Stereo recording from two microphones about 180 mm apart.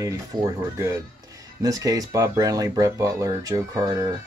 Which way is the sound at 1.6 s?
20° right (ahead or behind).